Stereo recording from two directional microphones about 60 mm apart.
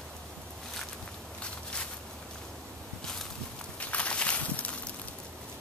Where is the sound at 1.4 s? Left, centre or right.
Centre.